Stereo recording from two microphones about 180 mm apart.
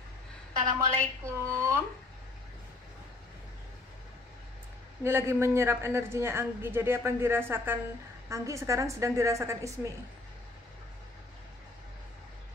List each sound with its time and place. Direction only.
0.7 s a woman's voice: 15° right (ahead or behind)
5.0 s a woman's voice: 15° right (ahead or behind)